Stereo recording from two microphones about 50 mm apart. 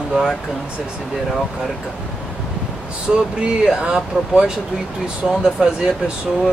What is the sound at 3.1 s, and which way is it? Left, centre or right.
Speech, right.